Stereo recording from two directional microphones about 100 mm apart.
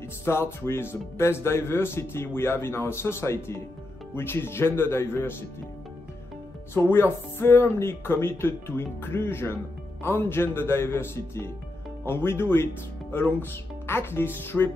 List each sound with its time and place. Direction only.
0.2 s speech: 25° left (ahead or behind)
6.9 s speech: 25° left (ahead or behind)